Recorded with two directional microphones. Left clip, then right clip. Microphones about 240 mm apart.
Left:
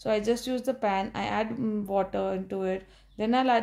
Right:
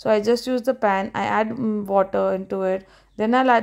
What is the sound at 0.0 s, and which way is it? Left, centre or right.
Speech, right.